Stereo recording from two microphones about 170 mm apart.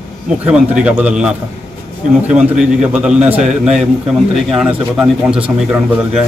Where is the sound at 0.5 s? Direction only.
5° right (ahead or behind).